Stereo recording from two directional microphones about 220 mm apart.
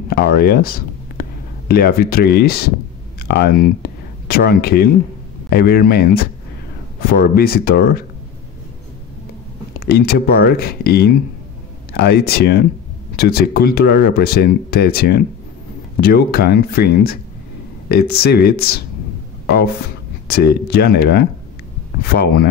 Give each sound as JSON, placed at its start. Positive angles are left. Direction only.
{"t": 0.1, "sound": "speech", "side_deg": 45}
{"t": 9.8, "sound": "speech", "side_deg": 45}